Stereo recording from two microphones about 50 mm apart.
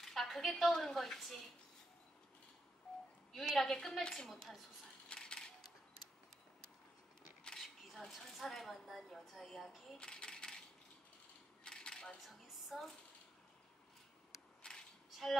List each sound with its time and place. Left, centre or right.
0.0 s a woman's voice: centre
3.3 s a woman's voice: centre
5.0 s a sound: centre
7.5 s speech: centre
9.9 s coin: centre
11.6 s coin: centre
12.3 s a sound: centre